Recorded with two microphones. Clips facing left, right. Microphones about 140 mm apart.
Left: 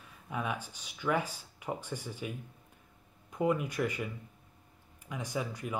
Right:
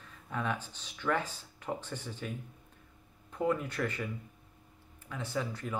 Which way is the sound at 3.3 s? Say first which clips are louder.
Left 1 dB; 10° left (ahead or behind).